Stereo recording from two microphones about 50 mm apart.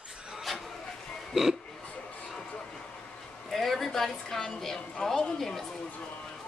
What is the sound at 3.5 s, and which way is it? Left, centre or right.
A woman's voice, centre.